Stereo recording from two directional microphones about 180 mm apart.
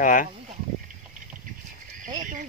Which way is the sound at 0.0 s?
50° left (ahead or behind).